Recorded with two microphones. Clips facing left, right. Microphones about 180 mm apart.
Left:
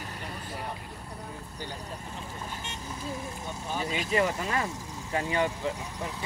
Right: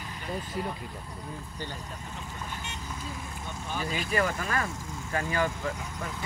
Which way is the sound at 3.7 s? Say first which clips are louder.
Left 1 dB; 20° left (ahead or behind).